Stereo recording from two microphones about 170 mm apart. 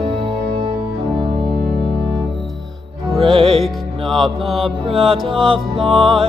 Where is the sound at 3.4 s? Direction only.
Centre (ahead or behind).